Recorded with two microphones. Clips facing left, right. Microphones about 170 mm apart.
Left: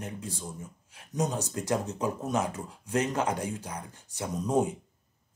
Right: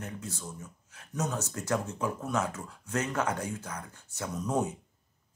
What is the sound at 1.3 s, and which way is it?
Speech, 15° left (ahead or behind).